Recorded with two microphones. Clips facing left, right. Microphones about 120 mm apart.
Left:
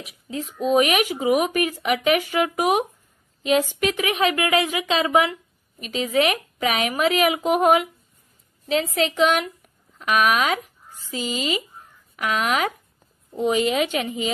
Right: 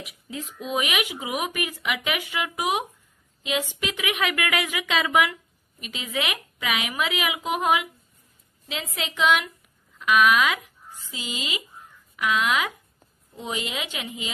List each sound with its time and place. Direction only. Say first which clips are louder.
0.4 s speech: left 9 dB; 40° left (ahead or behind)